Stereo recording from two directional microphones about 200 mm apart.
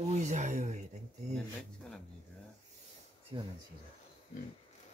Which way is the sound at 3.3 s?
25° right (ahead or behind).